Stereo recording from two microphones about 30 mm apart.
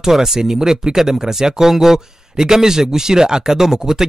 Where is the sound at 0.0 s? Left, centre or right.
Centre.